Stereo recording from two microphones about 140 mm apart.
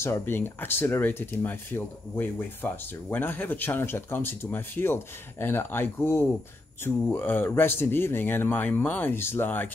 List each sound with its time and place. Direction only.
0.0 s speech: 15° left (ahead or behind)